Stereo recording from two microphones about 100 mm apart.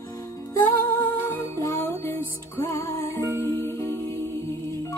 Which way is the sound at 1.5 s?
30° left (ahead or behind).